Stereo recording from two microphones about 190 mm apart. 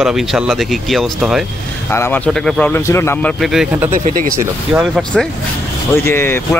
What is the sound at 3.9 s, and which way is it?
Speech, 45° right (ahead or behind).